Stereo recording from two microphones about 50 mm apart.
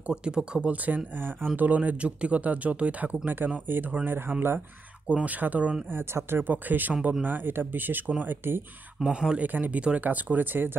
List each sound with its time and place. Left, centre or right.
0.1 s speech: centre
0.7 s speech: right
5.0 s speech: right
5.9 s speech: right
6.5 s speech: right
9.0 s speech: centre
9.4 s speech: right
9.8 s speech: right
10.0 s speech: right